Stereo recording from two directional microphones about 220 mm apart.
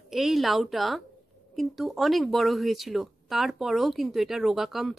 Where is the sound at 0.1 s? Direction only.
Centre (ahead or behind).